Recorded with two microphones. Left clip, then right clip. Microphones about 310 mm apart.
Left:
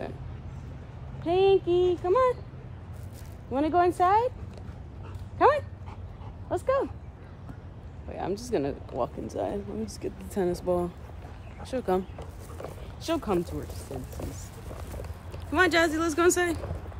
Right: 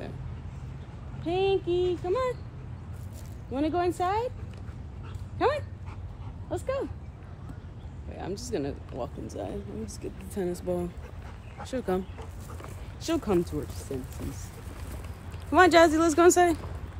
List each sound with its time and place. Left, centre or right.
1.2 s speech: left
3.5 s speech: left
5.4 s speech: left
8.1 s speech: left; by 12.0 s centre
13.0 s speech: centre
15.5 s speech: centre